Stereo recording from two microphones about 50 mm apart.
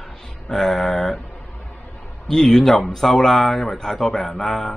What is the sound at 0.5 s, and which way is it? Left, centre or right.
Speech, centre.